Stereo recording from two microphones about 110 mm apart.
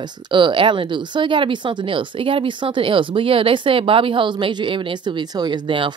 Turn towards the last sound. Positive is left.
turn(degrees=-50)  # may be behind; listen again after turning